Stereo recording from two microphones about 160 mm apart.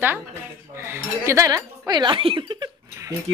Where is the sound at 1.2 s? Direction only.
20° right (ahead or behind).